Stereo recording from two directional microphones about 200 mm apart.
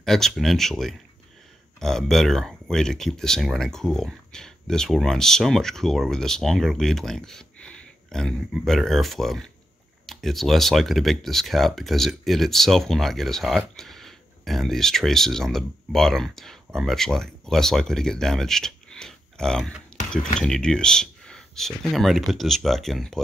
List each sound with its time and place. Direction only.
0.0 s speech: centre (ahead or behind)